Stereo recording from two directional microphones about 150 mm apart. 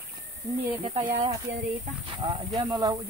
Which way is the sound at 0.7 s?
35° right (ahead or behind).